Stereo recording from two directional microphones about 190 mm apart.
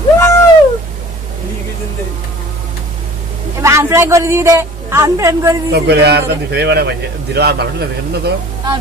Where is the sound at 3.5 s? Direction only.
15° right (ahead or behind).